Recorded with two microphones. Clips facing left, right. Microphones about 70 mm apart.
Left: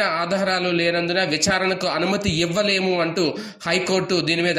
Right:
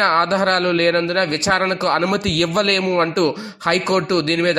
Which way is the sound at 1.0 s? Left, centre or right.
Right.